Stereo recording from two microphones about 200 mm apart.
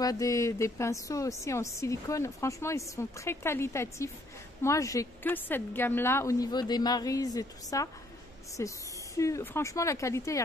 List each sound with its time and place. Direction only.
0.0 s a woman's voice: 15° left (ahead or behind)